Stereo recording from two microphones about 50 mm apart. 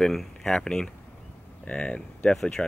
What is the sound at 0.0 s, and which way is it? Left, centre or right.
Speech, centre.